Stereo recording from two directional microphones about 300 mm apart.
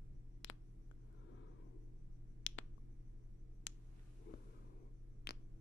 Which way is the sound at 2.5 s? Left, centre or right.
Left.